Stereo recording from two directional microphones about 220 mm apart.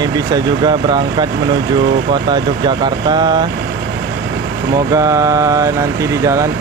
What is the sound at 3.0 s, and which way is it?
Speech, 20° right (ahead or behind).